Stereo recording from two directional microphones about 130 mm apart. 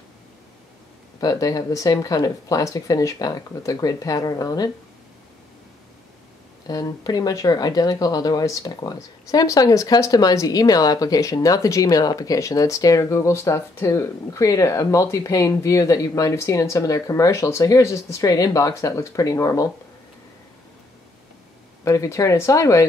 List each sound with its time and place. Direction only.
1.2 s speech: 30° left (ahead or behind)
6.7 s speech: 30° left (ahead or behind)
21.8 s speech: 25° left (ahead or behind)